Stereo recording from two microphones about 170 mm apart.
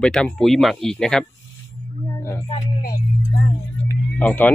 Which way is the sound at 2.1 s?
15° left (ahead or behind).